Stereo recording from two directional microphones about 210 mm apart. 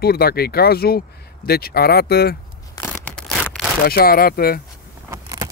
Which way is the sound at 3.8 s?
45° left (ahead or behind).